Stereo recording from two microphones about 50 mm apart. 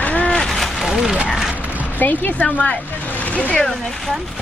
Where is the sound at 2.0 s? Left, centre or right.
Left.